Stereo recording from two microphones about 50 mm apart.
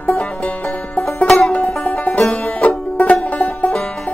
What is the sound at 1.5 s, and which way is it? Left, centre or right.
Music, left.